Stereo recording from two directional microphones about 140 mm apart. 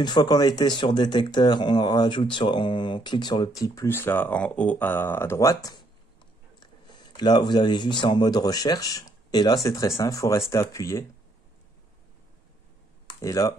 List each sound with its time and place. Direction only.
0.0 s speech: 30° left (ahead or behind)
13.2 s speech: 25° left (ahead or behind)